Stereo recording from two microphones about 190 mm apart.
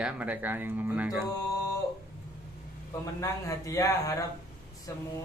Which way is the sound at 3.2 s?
15° left (ahead or behind).